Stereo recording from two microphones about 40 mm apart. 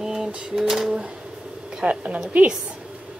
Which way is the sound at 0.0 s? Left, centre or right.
Centre.